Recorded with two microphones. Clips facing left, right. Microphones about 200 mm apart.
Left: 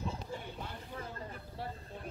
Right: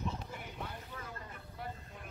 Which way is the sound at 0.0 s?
30° left (ahead or behind).